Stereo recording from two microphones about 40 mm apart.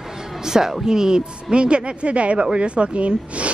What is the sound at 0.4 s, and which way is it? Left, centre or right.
Speech, centre.